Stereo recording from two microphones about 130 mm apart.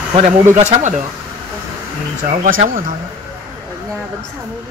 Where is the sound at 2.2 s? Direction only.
75° right (ahead or behind).